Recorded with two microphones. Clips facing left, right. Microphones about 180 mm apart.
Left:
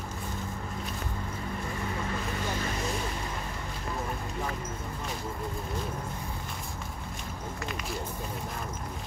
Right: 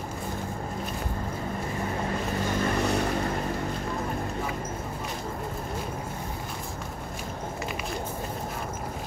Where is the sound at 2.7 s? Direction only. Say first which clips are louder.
Right 7 dB; 65° right (ahead or behind).